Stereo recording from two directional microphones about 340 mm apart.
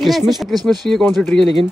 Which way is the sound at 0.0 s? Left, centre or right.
Centre.